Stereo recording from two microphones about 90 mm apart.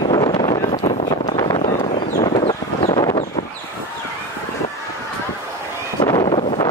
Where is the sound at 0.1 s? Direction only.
60° left (ahead or behind).